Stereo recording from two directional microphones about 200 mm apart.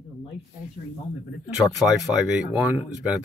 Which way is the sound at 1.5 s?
5° right (ahead or behind).